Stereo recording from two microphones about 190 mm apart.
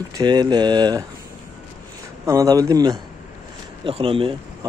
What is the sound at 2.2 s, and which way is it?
Speech, 20° right (ahead or behind).